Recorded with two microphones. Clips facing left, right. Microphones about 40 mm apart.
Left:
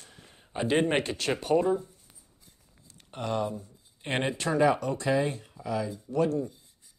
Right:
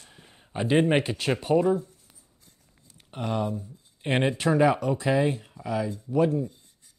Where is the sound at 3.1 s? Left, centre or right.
Centre.